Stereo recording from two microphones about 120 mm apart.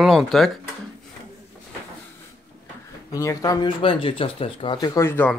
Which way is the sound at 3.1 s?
30° left (ahead or behind).